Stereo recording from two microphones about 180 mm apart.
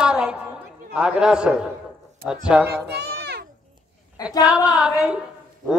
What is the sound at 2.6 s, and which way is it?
Children playing, 65° right (ahead or behind).